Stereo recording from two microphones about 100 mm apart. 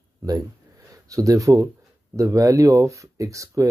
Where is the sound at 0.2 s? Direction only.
35° right (ahead or behind).